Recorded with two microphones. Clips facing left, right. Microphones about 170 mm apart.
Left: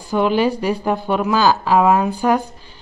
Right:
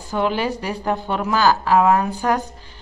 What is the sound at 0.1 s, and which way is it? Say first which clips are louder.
A woman's voice: left 5 dB; 15° left (ahead or behind).